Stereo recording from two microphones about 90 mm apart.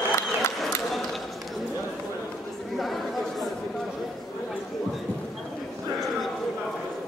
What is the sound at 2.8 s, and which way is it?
Chatter, centre (ahead or behind).